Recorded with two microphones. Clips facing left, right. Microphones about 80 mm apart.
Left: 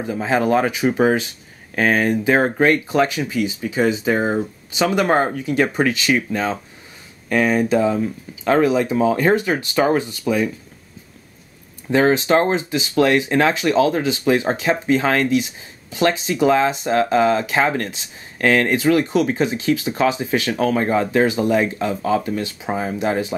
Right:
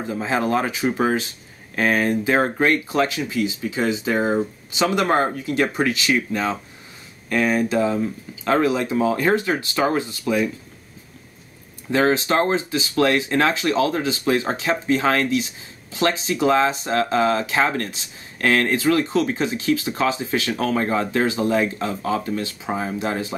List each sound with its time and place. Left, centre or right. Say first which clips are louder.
0.2 s speech: left 4 dB; left
11.9 s speech: left 3 dB; left